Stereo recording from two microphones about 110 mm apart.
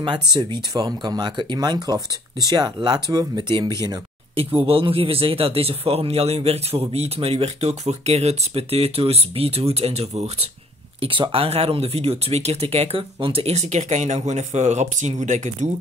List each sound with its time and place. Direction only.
0.0 s speech: 45° right (ahead or behind)
4.6 s speech: 55° right (ahead or behind); by 10.5 s 80° right
11.0 s speech: 55° right (ahead or behind); by 15.7 s 90° right